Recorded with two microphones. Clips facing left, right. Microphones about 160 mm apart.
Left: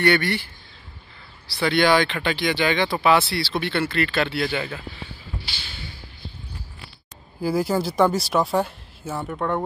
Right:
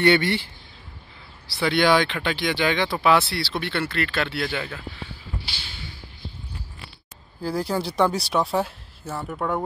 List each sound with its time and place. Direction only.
0.0 s speech: 20° right (ahead or behind)
1.6 s speech: 5° right (ahead or behind)
7.4 s speech: 5° left (ahead or behind)